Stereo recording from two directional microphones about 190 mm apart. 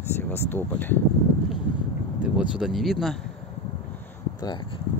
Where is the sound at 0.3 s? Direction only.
10° left (ahead or behind).